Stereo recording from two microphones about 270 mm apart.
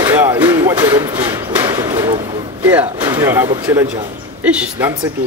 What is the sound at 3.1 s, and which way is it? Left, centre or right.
A man's voice, centre.